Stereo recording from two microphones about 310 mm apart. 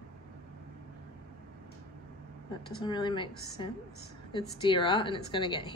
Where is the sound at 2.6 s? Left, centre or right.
Centre.